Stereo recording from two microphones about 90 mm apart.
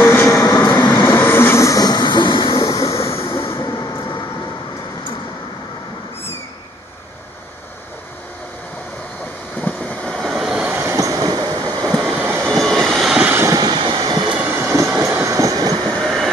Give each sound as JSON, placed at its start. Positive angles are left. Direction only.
{"t": 0.0, "sound": "vehicle", "side_deg": 25}
{"t": 0.4, "sound": "train", "side_deg": 40}
{"t": 1.0, "sound": "train", "side_deg": 25}
{"t": 2.6, "sound": "train", "side_deg": 40}
{"t": 9.6, "sound": "vehicle", "side_deg": 15}
{"t": 10.7, "sound": "train", "side_deg": -30}
{"t": 11.8, "sound": "a sound", "side_deg": 5}
{"t": 12.1, "sound": "train", "side_deg": -25}
{"t": 12.4, "sound": "train", "side_deg": 5}
{"t": 13.3, "sound": "vehicle", "side_deg": -30}
{"t": 13.6, "sound": "vehicle", "side_deg": -60}
{"t": 14.2, "sound": "vehicle", "side_deg": -15}
{"t": 14.5, "sound": "train", "side_deg": -25}
{"t": 16.0, "sound": "train", "side_deg": 0}